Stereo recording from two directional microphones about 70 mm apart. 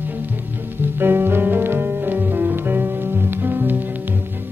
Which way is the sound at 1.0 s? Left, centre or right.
Right.